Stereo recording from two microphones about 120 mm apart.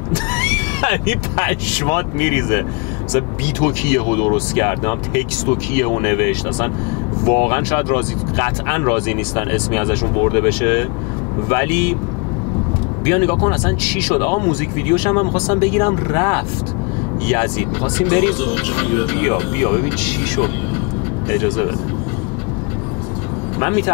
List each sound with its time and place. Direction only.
0.1 s speech: 15° left (ahead or behind)
13.0 s speech: 20° left (ahead or behind)
23.6 s speech: 20° left (ahead or behind)